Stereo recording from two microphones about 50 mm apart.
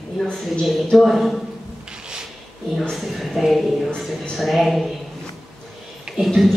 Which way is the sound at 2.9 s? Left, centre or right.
Centre.